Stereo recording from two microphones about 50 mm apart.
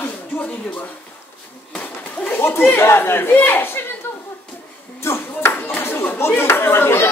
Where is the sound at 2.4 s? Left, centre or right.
Left.